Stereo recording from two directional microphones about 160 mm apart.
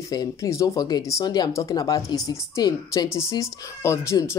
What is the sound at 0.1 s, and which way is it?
A woman's voice, 20° left (ahead or behind).